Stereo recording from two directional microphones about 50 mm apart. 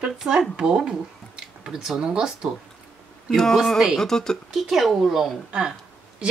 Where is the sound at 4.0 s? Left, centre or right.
Centre.